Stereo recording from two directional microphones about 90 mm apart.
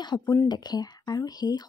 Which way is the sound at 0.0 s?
55° left (ahead or behind).